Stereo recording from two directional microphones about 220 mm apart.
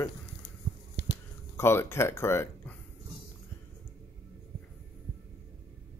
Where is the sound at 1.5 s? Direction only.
10° left (ahead or behind).